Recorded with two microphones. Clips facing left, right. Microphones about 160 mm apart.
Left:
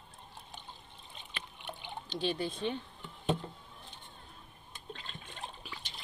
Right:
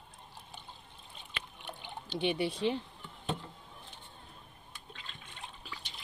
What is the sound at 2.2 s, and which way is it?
Speech, 70° right (ahead or behind).